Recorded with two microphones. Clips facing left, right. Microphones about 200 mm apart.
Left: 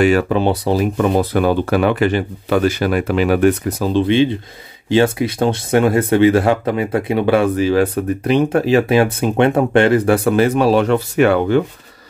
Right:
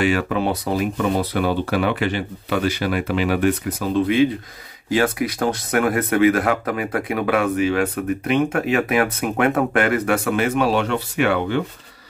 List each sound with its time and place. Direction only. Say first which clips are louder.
0.3 s speech: left 5 dB; 30° left (ahead or behind)
1.1 s speech: left 5 dB; 45° left (ahead or behind)